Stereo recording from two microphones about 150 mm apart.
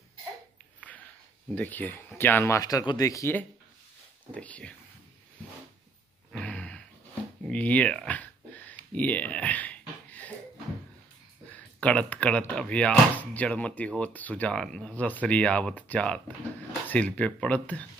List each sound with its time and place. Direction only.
1.5 s speech: 10° left (ahead or behind)
6.3 s a sound: 5° left (ahead or behind)
11.5 s speech: 10° left (ahead or behind)